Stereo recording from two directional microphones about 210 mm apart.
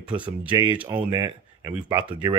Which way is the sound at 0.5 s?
25° right (ahead or behind).